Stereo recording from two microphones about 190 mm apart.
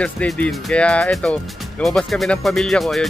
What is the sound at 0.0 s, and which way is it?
Speech, 5° left (ahead or behind).